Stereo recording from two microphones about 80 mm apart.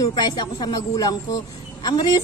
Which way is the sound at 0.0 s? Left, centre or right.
Left.